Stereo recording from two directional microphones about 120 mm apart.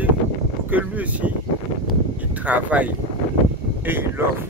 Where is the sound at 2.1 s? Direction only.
10° right (ahead or behind).